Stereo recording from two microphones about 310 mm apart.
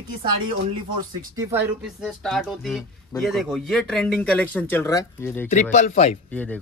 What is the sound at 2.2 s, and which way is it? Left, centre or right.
A man's voice, centre.